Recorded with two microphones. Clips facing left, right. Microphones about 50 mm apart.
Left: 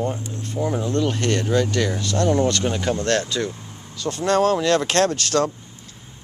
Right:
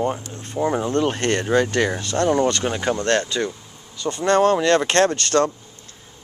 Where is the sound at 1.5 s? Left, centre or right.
Right.